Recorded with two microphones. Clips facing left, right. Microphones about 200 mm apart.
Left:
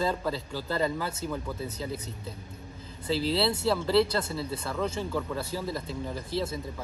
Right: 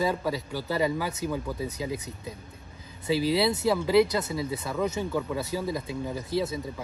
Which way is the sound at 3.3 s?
15° right (ahead or behind).